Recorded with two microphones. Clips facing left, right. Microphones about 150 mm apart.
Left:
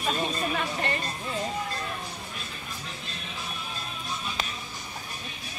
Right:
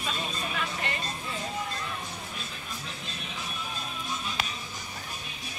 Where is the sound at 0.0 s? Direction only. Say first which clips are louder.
Left 6 dB; 40° left (ahead or behind).